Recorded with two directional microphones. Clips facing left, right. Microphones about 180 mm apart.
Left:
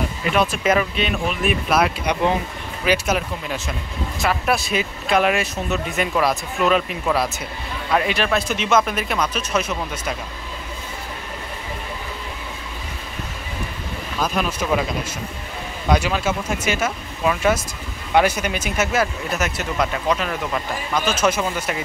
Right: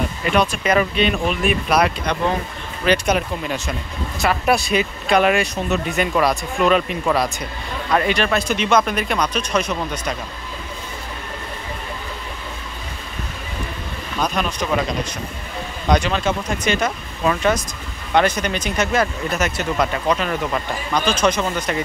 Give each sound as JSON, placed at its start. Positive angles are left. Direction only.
{"t": 0.3, "sound": "speech", "side_deg": 5}
{"t": 14.2, "sound": "speech", "side_deg": 5}
{"t": 15.9, "sound": "speech", "side_deg": 5}